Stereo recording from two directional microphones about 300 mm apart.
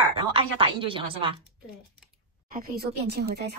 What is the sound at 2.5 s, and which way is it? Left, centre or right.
Speech, right.